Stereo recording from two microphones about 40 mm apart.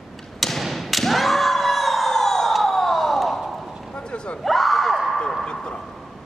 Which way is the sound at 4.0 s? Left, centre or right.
Left.